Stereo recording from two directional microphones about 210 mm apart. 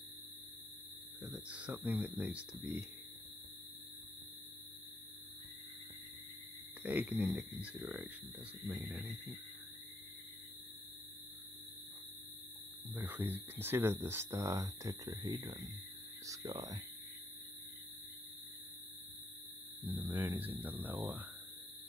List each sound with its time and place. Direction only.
1.2 s speech: 10° right (ahead or behind)
6.8 s speech: 5° right (ahead or behind)
12.9 s speech: 10° right (ahead or behind)
19.9 s speech: 10° right (ahead or behind)